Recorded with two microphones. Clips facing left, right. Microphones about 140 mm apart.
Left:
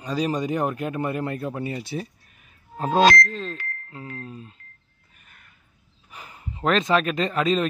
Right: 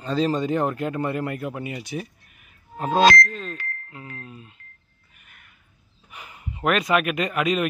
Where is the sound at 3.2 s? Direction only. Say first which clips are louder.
Left 1 dB; 5° right (ahead or behind).